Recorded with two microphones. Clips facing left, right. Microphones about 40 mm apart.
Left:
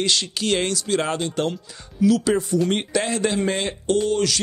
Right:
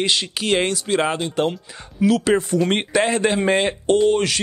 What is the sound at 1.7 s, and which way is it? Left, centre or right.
Speech, right.